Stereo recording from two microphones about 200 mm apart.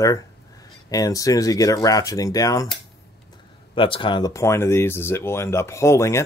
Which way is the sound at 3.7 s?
25° left (ahead or behind).